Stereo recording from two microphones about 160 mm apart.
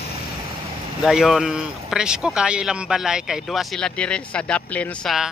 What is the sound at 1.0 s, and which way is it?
A man's voice, centre (ahead or behind).